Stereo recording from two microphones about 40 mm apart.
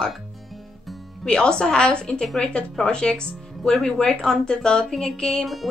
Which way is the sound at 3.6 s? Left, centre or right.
Centre.